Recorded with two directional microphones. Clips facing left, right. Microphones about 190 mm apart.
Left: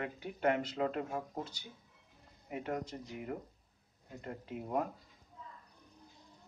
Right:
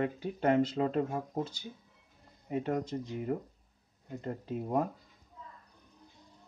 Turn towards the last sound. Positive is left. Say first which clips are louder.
# right 5 dB
turn(degrees=-30)  # may be behind; listen again after turning